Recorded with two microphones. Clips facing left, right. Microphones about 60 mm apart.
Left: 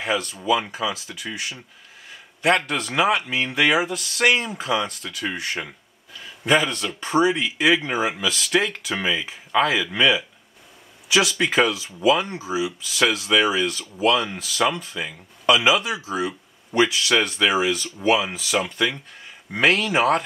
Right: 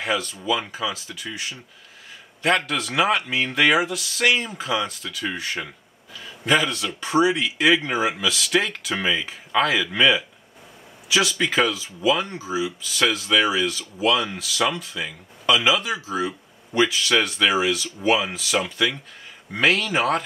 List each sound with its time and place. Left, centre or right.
0.4 s speech: centre
6.7 s speech: centre
7.3 s speech: centre
13.7 s speech: left
14.2 s speech: centre